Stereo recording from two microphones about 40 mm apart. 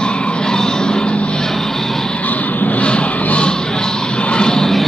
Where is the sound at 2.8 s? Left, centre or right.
Left.